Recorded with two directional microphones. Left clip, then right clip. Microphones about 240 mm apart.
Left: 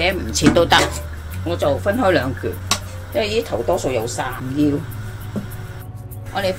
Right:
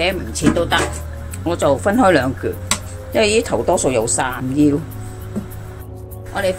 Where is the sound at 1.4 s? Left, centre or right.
Right.